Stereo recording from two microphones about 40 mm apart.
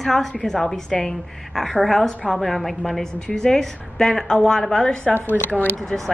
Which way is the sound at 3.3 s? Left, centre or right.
Centre.